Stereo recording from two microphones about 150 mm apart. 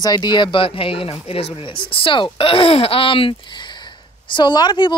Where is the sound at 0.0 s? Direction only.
30° left (ahead or behind).